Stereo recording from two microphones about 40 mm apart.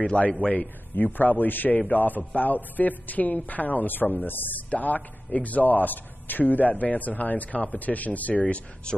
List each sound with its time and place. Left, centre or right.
0.2 s a man's voice: left
0.5 s a man's voice: left